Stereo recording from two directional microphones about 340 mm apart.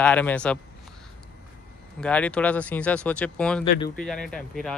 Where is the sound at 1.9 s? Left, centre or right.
Centre.